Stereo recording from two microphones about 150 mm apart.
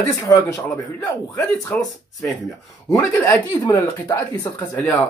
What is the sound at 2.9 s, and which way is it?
Speech, 15° left (ahead or behind).